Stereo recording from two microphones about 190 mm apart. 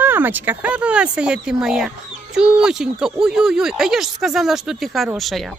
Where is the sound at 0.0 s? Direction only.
10° right (ahead or behind).